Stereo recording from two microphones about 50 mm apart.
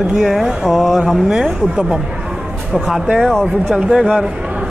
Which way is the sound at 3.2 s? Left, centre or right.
Centre.